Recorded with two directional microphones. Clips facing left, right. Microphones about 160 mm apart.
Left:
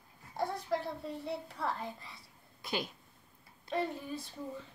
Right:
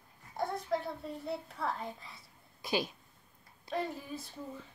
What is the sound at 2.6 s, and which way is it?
Speech, 20° right (ahead or behind).